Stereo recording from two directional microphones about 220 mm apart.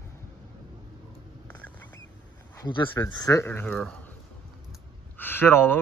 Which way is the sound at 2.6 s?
20° left (ahead or behind).